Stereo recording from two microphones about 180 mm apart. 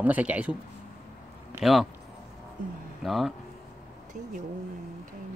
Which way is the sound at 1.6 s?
Centre (ahead or behind).